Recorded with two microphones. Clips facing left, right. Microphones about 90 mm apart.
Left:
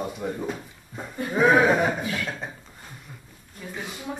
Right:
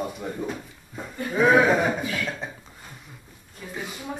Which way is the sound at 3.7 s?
5° right (ahead or behind).